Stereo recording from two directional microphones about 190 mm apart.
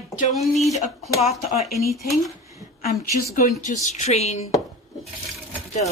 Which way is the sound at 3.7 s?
40° left (ahead or behind).